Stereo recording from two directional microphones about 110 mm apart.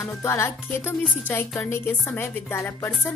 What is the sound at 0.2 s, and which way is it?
A woman's voice, 25° left (ahead or behind).